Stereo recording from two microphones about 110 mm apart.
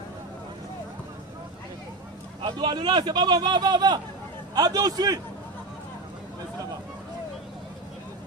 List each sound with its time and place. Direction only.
2.4 s a man's voice: 45° right (ahead or behind)